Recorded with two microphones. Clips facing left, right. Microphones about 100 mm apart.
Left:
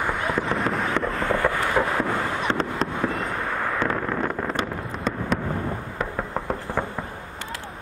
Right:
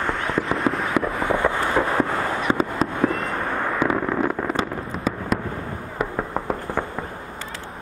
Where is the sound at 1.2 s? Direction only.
20° right (ahead or behind).